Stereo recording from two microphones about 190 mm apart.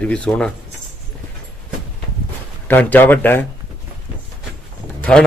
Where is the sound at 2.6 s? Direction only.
10° left (ahead or behind).